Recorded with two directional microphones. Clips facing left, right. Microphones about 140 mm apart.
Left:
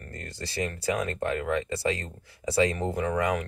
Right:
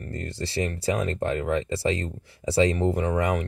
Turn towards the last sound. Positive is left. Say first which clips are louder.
# right 3 dB
turn(degrees=-30)  # may be behind; listen again after turning